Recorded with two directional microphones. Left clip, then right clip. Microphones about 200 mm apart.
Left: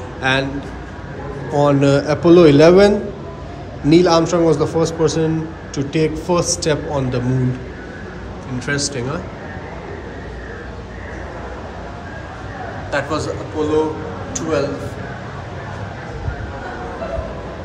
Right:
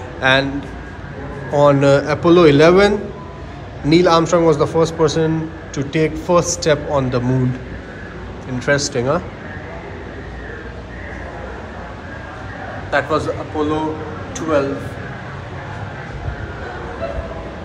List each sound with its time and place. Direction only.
0.2 s a man's voice: 15° left (ahead or behind)
1.5 s a man's voice: 15° left (ahead or behind)
8.5 s speech: 5° left (ahead or behind)
12.9 s a man's voice: 10° left (ahead or behind)